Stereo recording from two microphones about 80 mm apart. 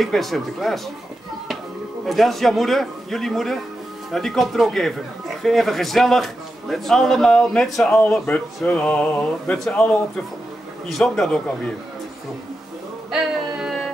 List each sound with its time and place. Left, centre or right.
0.0 s a man's voice: centre
2.0 s a man's voice: centre
8.7 s music: centre
10.9 s music: centre
13.1 s a sound: centre